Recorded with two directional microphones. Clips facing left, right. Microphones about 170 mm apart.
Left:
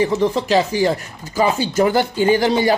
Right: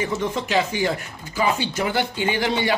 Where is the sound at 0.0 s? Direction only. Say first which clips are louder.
Left 7 dB; 35° left (ahead or behind).